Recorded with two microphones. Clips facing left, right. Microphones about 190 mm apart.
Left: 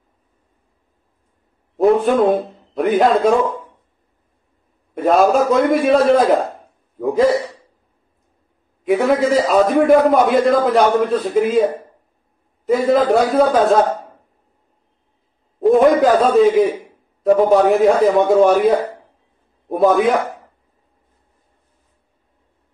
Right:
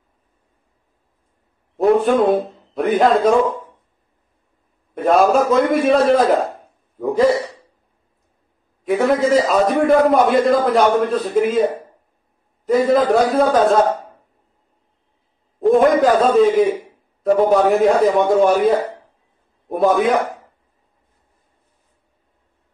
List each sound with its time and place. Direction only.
2.7 s a man's voice: centre (ahead or behind)
5.0 s a man's voice: centre (ahead or behind)
8.8 s a man's voice: centre (ahead or behind)
12.6 s a man's voice: centre (ahead or behind)
15.6 s a man's voice: centre (ahead or behind)